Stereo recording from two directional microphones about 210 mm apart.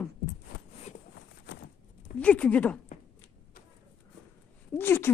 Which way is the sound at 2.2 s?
5° left (ahead or behind).